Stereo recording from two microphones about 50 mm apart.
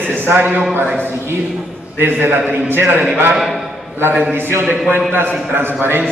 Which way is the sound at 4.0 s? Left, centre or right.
Right.